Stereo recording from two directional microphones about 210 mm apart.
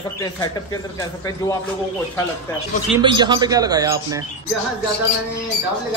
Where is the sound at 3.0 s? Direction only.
20° right (ahead or behind).